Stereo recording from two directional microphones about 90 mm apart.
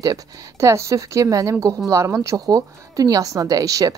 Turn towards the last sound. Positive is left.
turn(degrees=-40)  # may be behind; listen again after turning